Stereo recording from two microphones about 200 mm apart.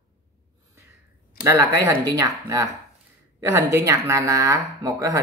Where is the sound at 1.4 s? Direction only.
15° right (ahead or behind).